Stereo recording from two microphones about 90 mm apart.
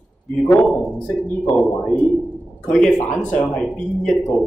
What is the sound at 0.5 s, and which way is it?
Speech, 10° left (ahead or behind).